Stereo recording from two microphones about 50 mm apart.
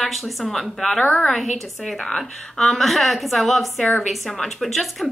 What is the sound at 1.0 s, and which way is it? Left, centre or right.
Speech, left.